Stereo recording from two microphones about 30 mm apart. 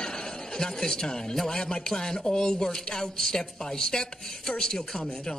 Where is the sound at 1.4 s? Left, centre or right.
Centre.